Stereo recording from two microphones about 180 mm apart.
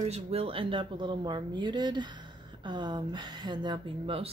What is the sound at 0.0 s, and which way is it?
Speech, 35° right (ahead or behind).